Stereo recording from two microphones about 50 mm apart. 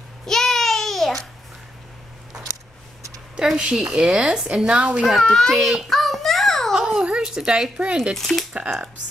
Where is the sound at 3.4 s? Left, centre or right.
Centre.